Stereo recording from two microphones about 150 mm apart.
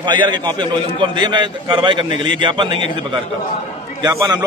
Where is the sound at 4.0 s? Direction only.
25° right (ahead or behind).